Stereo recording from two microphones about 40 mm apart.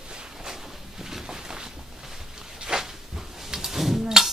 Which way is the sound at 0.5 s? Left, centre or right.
Centre.